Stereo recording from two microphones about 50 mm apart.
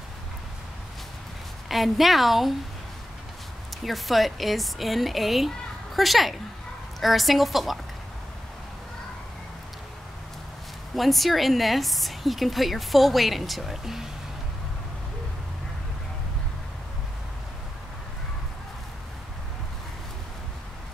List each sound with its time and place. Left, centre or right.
1.7 s a woman's voice: centre
3.8 s a woman's voice: centre
11.0 s a woman's voice: centre